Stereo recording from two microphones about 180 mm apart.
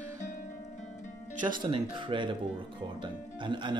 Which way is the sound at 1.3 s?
45° right (ahead or behind).